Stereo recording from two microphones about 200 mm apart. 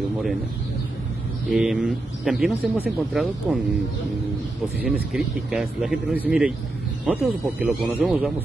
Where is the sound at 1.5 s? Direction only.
Centre (ahead or behind).